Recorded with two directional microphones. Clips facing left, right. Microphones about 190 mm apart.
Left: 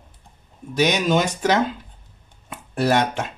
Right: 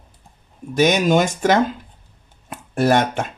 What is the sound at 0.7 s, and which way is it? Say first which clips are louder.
Speech: right 3 dB; 50° right (ahead or behind).